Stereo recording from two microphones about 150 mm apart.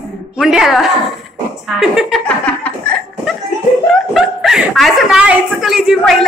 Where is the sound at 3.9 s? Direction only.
Centre (ahead or behind).